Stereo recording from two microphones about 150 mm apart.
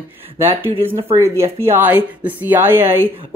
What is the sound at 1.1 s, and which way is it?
Speech, 15° right (ahead or behind).